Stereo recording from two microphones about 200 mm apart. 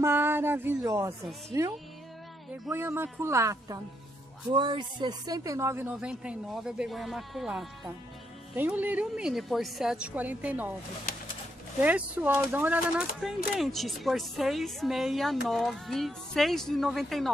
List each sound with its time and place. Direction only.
0.0 s speech: 10° right (ahead or behind)
2.7 s a woman's voice: 10° right (ahead or behind)
11.8 s a woman's voice: 10° right (ahead or behind)